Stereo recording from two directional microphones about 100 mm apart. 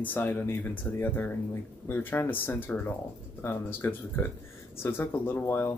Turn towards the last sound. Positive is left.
turn(degrees=20)  # may be behind; listen again after turning